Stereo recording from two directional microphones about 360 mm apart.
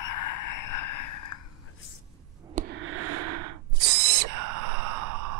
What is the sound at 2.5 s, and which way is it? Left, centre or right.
Owl, right.